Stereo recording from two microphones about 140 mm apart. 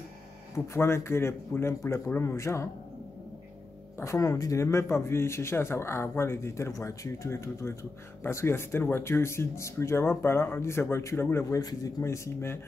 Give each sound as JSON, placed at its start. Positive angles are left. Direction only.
{"t": 0.7, "sound": "speech", "side_deg": 20}
{"t": 4.0, "sound": "speech", "side_deg": 20}